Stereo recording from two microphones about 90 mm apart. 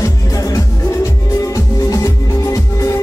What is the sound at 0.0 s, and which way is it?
Music, 40° left (ahead or behind).